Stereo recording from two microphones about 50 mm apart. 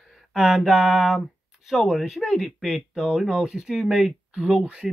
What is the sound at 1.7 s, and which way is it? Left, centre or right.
Speech, centre.